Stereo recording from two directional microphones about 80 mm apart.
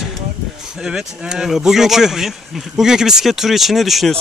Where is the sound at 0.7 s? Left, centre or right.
Centre.